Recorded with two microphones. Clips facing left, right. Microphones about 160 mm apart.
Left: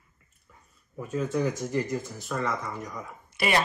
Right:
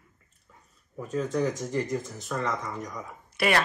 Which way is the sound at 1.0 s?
5° left (ahead or behind).